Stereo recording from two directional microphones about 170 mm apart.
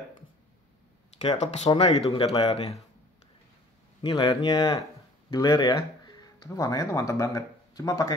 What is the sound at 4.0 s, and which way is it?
Speech, 25° left (ahead or behind).